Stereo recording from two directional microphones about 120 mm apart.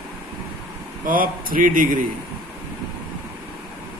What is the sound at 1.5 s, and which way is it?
Speech, 90° right.